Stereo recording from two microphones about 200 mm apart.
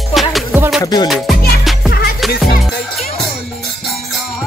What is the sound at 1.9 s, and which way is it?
Music, 50° left (ahead or behind).